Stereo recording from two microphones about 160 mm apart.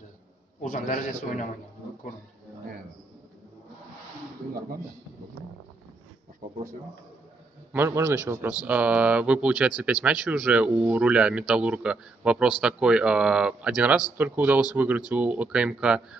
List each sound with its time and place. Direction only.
0.6 s a man's voice: 55° left (ahead or behind)
7.7 s speech: 15° right (ahead or behind)